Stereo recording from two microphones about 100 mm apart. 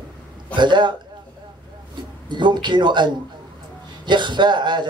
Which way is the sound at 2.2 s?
50° right (ahead or behind).